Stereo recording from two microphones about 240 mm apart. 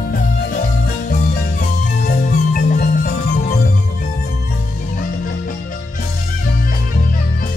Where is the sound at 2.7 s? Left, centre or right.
Left.